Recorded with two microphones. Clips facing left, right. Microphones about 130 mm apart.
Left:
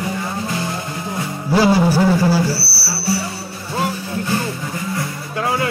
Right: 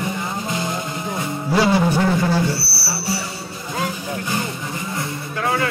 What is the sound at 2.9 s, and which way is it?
Music, 25° right (ahead or behind).